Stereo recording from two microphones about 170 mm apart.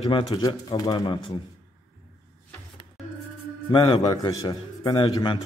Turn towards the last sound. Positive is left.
turn(degrees=25)  # may be behind; listen again after turning